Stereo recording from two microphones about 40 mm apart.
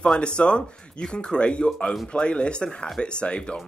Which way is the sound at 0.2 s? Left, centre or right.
Left.